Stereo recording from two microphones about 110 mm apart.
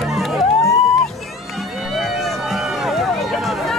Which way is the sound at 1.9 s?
Centre (ahead or behind).